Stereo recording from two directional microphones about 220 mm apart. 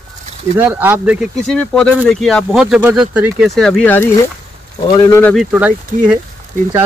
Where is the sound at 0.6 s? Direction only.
10° right (ahead or behind); by 5.3 s 15° left (ahead or behind).